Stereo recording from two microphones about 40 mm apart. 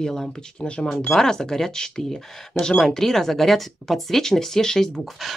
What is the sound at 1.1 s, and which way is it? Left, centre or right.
Speech, centre.